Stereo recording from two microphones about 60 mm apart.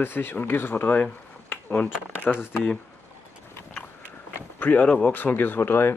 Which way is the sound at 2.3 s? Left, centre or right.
Centre.